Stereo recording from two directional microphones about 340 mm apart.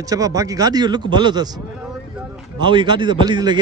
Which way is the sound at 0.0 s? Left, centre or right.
Centre.